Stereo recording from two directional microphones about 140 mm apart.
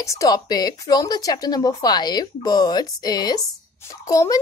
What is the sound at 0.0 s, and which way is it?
Speech, 25° left (ahead or behind).